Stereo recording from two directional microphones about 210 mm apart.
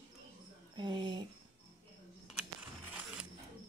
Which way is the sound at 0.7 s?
20° right (ahead or behind).